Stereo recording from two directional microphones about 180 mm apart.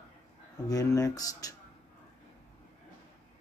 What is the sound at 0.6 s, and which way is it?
Speech, 20° left (ahead or behind).